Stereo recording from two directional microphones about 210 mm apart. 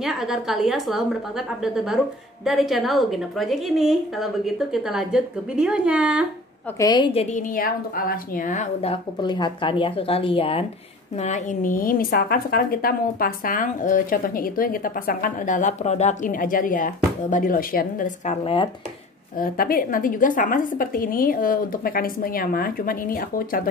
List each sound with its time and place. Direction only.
0.0 s a woman's voice: centre (ahead or behind)
6.8 s a woman's voice: 20° left (ahead or behind)
19.3 s a woman's voice: 45° left (ahead or behind)